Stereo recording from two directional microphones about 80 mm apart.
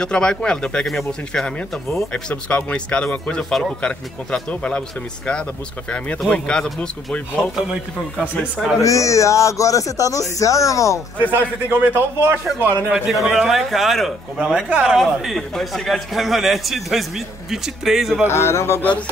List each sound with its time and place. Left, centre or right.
0.0 s speech: centre
8.7 s speech: left
11.3 s a man's voice: right
12.9 s a man's voice: centre
14.4 s a man's voice: centre
18.3 s speech: left
18.8 s speech: centre